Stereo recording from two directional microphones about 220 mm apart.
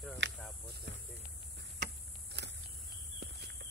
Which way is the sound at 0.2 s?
55° right (ahead or behind).